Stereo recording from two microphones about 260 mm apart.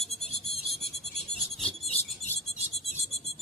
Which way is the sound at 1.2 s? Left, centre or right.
Centre.